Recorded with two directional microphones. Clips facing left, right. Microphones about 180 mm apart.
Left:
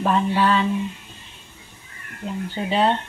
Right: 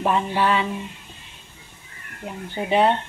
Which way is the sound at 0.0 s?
10° right (ahead or behind).